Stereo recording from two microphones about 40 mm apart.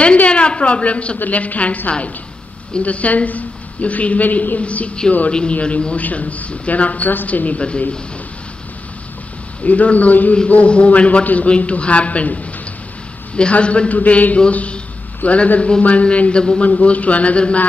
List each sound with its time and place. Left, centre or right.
0.0 s a woman's voice: left
1.2 s a woman's voice: left
2.8 s a woman's voice: left
9.7 s a woman's voice: left
10.5 s a woman's voice: left
13.4 s a woman's voice: left